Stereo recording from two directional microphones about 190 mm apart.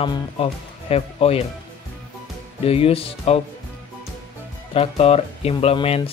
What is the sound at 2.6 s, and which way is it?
Speech, 30° left (ahead or behind).